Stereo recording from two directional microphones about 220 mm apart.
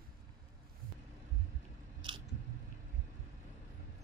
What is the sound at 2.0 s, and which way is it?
Biting, 20° right (ahead or behind).